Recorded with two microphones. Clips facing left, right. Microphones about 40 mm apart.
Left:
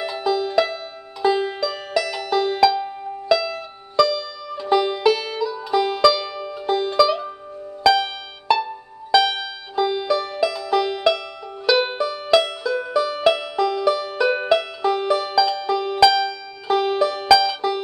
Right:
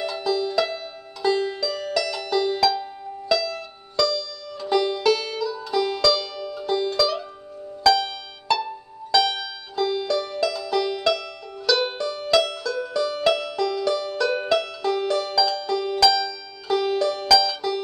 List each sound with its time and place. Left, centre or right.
0.0 s music: centre